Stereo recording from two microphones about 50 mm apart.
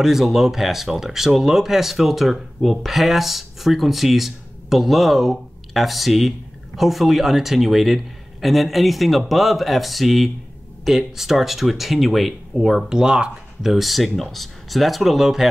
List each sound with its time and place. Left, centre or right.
0.0 s speech: centre
13.0 s speech: centre
13.7 s speech: centre